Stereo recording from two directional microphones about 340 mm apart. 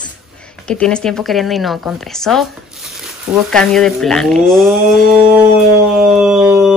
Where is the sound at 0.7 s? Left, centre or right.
Centre.